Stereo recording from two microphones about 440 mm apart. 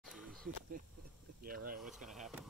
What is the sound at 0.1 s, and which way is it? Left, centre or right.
Wild animals, centre.